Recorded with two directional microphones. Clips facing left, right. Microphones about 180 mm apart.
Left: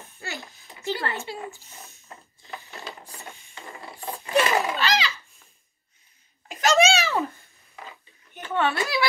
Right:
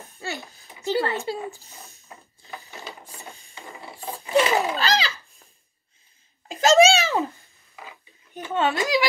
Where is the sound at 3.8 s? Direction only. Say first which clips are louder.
Even; 20° right (ahead or behind).